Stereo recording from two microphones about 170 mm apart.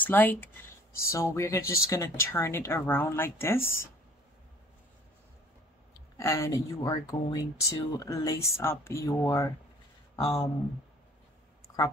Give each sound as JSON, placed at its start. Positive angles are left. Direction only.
{"t": 0.0, "sound": "speech", "side_deg": 10}
{"t": 6.1, "sound": "speech", "side_deg": 15}
{"t": 10.1, "sound": "speech", "side_deg": 35}
{"t": 11.6, "sound": "a sound", "side_deg": 20}